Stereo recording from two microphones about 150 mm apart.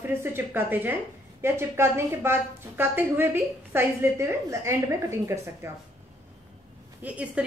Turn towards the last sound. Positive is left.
turn(degrees=-10)  # may be behind; listen again after turning